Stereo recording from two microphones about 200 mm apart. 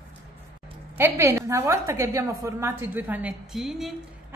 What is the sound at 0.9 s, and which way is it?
A woman's voice, 10° right (ahead or behind).